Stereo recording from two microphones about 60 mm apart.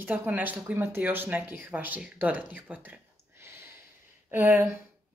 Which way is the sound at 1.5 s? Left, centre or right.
Right.